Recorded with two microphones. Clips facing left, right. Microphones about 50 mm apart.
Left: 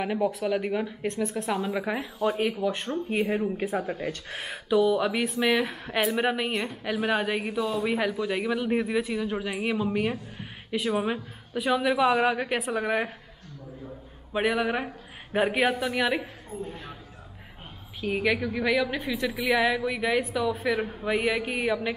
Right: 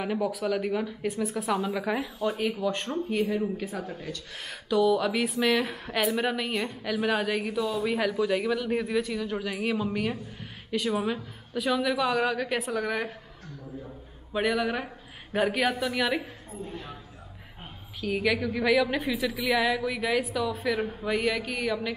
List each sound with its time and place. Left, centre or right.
0.0 s speech: centre
1.0 s speech: centre
1.5 s speech: centre
2.1 s a woman's voice: left
2.7 s speech: centre
3.3 s a woman's voice: left
4.5 s a woman's voice: centre
14.3 s speech: centre
18.0 s speech: centre